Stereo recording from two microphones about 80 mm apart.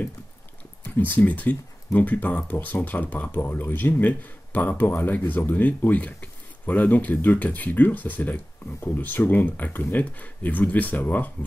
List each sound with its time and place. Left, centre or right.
0.8 s speech: left